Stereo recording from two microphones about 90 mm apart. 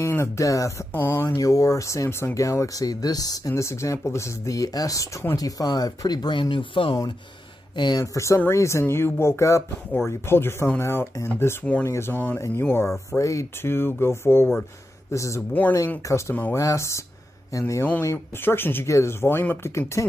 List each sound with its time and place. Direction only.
0.0 s speech: 30° left (ahead or behind)
0.9 s speech: 20° left (ahead or behind)
1.2 s speech: 35° left (ahead or behind); by 7.0 s 70° left (ahead or behind)
7.7 s speech: 55° left (ahead or behind)
8.0 s speech: 35° left (ahead or behind)